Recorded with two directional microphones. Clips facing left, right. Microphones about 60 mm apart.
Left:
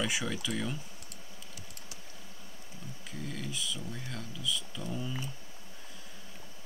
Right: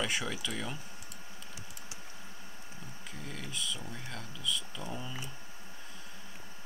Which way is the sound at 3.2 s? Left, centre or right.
Centre.